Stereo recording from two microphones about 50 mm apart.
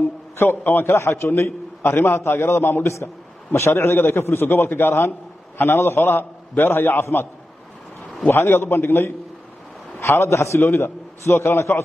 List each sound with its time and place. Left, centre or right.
0.0 s a sound: left
0.9 s a man's voice: left
8.3 s a man's voice: left